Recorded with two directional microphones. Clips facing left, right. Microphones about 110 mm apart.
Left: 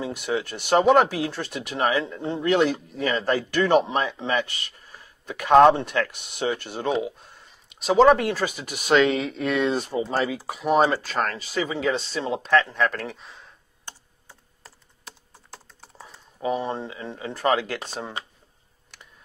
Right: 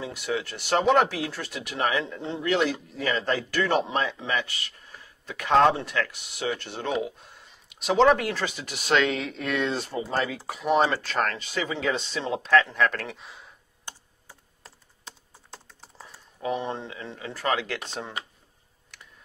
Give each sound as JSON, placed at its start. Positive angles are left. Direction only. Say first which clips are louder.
{"t": 0.0, "sound": "speech", "louder": "left 3 dB", "side_deg": 20}
{"t": 2.0, "sound": "speech", "louder": "left 3 dB", "side_deg": 5}
{"t": 2.4, "sound": "speech", "louder": "left 4 dB", "side_deg": 20}
{"t": 6.6, "sound": "speech", "louder": "left 3 dB", "side_deg": 10}
{"t": 8.9, "sound": "speech", "louder": "left 4 dB", "side_deg": 0}
{"t": 9.7, "sound": "speech", "louder": "left 4 dB", "side_deg": 15}
{"t": 15.5, "sound": "typing", "louder": "left 1 dB", "side_deg": 5}
{"t": 16.3, "sound": "speech", "louder": "left 3 dB", "side_deg": 5}
{"t": 16.9, "sound": "speech", "louder": "left 3 dB", "side_deg": 15}
{"t": 17.8, "sound": "speech", "louder": "left 2 dB", "side_deg": 10}